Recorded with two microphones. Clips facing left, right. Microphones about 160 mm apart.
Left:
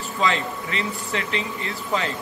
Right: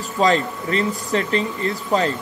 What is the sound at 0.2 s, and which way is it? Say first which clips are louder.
Speech: right 6 dB; 40° right (ahead or behind).